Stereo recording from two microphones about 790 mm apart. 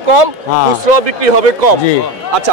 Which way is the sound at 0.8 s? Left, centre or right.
Right.